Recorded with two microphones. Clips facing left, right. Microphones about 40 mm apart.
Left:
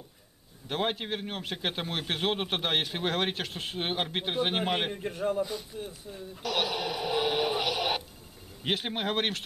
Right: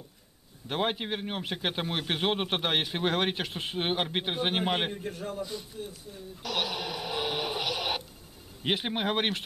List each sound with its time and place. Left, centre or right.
0.7 s a man's voice: centre
4.9 s a man's voice: left
6.4 s radio: centre
8.6 s a man's voice: centre